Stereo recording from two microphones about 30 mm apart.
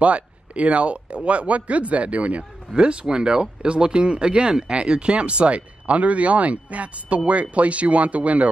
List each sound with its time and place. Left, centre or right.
0.0 s a man's voice: right
2.7 s speech: right